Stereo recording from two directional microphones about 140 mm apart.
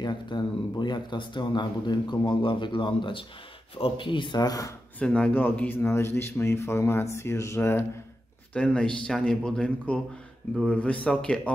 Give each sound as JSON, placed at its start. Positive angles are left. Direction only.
{"t": 0.0, "sound": "speech", "side_deg": 30}
{"t": 4.9, "sound": "a man's voice", "side_deg": 5}
{"t": 8.5, "sound": "a man's voice", "side_deg": 5}